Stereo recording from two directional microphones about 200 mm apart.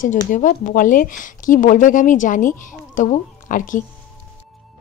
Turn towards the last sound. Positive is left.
turn(degrees=40)  # may be behind; listen again after turning